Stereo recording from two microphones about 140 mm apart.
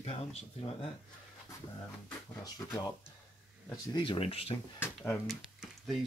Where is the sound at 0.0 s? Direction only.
45° left (ahead or behind).